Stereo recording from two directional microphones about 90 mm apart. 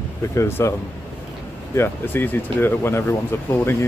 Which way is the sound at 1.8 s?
25° left (ahead or behind).